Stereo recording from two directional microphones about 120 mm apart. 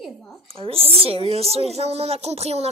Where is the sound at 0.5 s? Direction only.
50° right (ahead or behind).